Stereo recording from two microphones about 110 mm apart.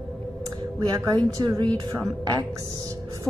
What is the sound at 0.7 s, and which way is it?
A woman's voice, 35° right (ahead or behind).